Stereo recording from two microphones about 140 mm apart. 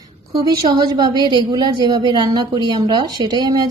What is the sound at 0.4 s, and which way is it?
A woman's voice, 30° right (ahead or behind).